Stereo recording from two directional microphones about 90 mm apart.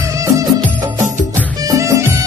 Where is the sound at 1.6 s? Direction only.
35° right (ahead or behind).